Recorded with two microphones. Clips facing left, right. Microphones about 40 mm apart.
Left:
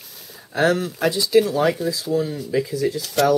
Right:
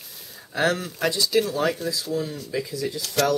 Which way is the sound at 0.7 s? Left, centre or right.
Centre.